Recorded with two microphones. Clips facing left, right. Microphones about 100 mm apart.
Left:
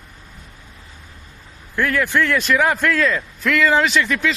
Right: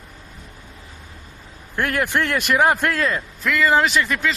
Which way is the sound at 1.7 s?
55° right (ahead or behind).